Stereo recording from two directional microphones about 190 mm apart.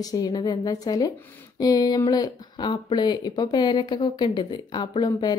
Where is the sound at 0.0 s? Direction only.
20° left (ahead or behind).